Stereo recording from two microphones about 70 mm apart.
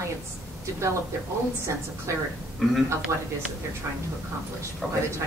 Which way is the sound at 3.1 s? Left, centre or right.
Right.